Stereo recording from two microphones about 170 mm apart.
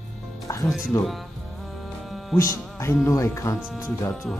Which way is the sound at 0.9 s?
15° left (ahead or behind).